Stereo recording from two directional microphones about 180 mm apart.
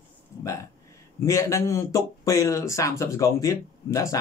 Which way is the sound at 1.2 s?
15° left (ahead or behind).